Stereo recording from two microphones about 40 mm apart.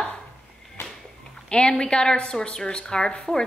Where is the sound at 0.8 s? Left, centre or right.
Left.